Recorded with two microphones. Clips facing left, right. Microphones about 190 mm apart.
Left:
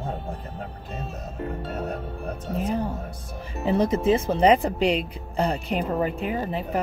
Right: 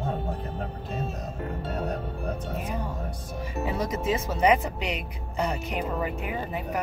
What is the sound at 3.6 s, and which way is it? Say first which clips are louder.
Speech: left 8 dB; 30° left (ahead or behind).